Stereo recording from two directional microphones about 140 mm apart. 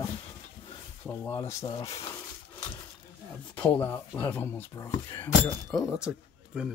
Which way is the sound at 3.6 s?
10° left (ahead or behind).